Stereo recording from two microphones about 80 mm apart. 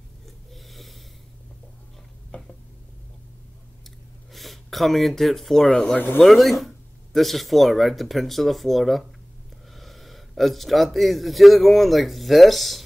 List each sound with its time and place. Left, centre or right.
0.7 s snort: centre
4.3 s speech: centre
5.9 s speech: left
6.2 s speech: centre